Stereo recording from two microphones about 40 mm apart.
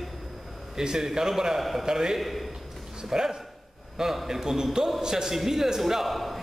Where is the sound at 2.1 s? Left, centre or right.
Centre.